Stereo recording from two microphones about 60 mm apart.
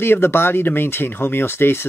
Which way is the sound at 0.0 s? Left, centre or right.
Left.